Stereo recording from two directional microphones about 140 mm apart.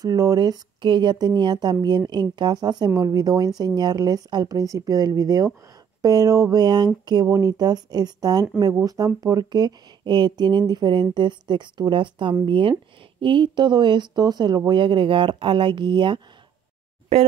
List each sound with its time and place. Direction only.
0.0 s speech: 25° right (ahead or behind)